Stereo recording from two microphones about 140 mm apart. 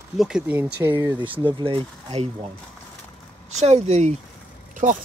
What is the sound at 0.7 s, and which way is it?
Speech, 20° right (ahead or behind).